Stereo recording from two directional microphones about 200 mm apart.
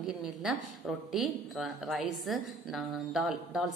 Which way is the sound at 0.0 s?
Centre (ahead or behind).